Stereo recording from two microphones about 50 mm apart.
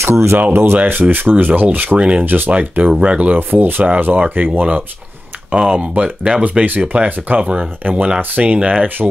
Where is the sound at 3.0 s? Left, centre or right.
Right.